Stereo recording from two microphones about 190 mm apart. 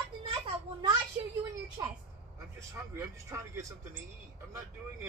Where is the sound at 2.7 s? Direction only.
15° right (ahead or behind).